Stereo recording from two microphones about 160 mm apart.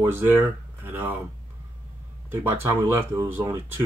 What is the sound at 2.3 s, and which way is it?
Speech, 15° right (ahead or behind).